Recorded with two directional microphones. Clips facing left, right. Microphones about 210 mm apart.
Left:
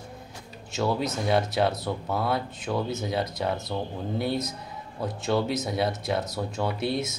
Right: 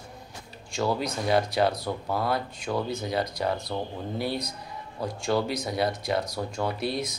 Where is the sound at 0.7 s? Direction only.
Centre (ahead or behind).